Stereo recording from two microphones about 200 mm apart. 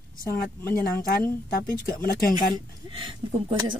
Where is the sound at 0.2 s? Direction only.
15° left (ahead or behind).